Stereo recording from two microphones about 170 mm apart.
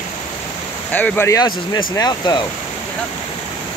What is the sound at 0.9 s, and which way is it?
Speech, 10° left (ahead or behind).